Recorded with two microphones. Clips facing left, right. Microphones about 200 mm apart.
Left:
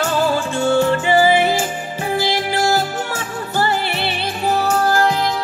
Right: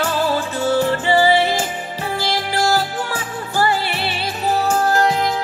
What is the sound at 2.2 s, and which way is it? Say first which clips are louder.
Music: right 1 dB; 20° left (ahead or behind).